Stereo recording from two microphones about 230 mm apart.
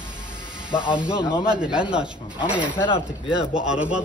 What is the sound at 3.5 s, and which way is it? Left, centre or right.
Speech, centre.